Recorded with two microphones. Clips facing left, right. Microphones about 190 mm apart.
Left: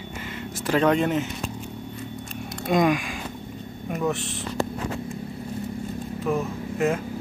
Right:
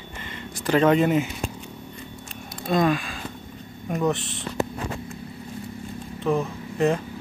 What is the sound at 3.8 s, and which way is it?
Speech, centre (ahead or behind).